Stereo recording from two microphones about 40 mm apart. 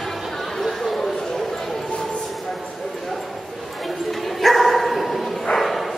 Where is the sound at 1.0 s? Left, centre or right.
Centre.